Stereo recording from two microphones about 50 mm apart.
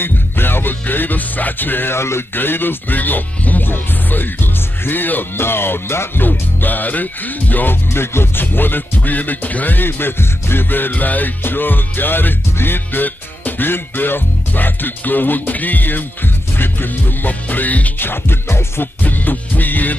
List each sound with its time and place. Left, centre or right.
0.0 s music: left
2.0 s speech: left
2.3 s music: left
7.9 s music: left
17.9 s music: left
19.0 s music: left